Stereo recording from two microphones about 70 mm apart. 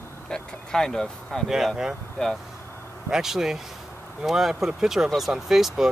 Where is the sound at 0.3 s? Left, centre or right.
Centre.